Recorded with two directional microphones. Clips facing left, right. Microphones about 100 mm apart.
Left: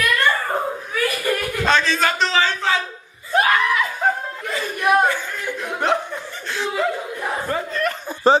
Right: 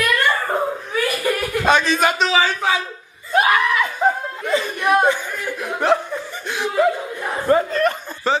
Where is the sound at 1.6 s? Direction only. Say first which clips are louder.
Right 2 dB; 15° right (ahead or behind).